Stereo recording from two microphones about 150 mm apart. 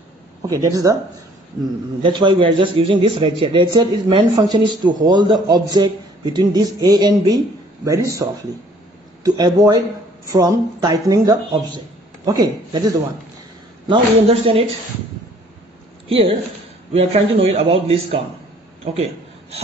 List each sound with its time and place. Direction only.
0.5 s a man's voice: 20° right (ahead or behind)
13.8 s a man's voice: 40° right (ahead or behind)
16.1 s a man's voice: 35° right (ahead or behind)